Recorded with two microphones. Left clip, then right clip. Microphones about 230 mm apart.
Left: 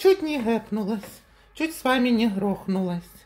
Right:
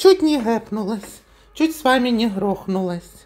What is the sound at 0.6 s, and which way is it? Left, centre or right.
Speech, centre.